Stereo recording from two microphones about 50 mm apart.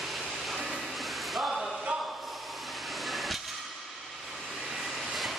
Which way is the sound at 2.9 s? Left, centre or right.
Centre.